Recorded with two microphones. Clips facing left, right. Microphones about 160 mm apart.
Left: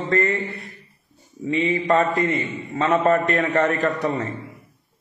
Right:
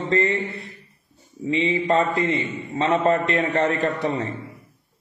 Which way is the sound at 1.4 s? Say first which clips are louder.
Even; 30° right (ahead or behind).